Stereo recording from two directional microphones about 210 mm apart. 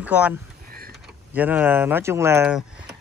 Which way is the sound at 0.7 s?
45° right (ahead or behind).